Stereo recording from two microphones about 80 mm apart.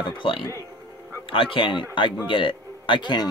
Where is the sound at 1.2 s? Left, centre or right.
Left.